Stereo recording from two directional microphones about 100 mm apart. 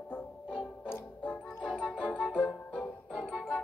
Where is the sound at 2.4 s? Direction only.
15° left (ahead or behind).